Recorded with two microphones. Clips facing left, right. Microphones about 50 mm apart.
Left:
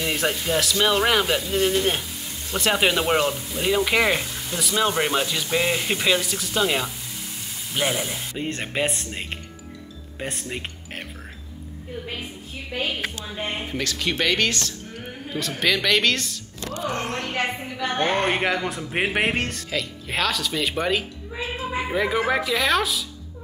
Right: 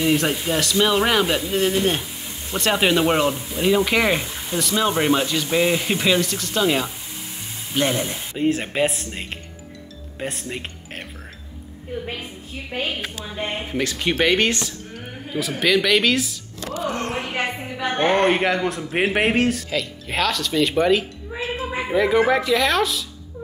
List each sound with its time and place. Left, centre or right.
0.0 s a man's voice: centre
4.3 s a sound: right
4.6 s a man's voice: centre
13.2 s a man's voice: centre
13.8 s speech: centre
15.2 s a man's voice: centre
17.1 s music: centre
17.9 s a man's voice: centre